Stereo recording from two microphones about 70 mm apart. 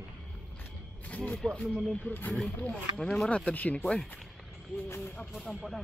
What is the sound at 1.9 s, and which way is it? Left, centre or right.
Speech, left.